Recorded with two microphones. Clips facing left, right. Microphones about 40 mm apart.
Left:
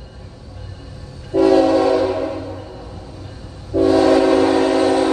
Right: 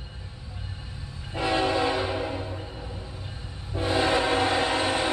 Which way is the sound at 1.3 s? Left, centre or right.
Right.